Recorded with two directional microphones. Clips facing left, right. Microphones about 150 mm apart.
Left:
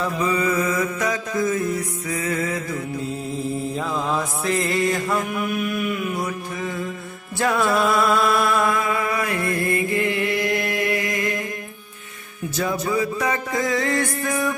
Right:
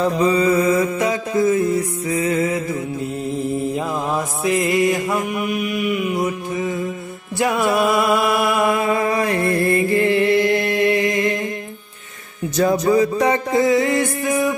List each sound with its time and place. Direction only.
0.0 s mantra: 35° right (ahead or behind); by 6.8 s 15° right (ahead or behind)
7.3 s music: 15° right (ahead or behind)
8.8 s mantra: 35° right (ahead or behind)
12.5 s mantra: 40° right (ahead or behind); by 14.5 s 15° right (ahead or behind)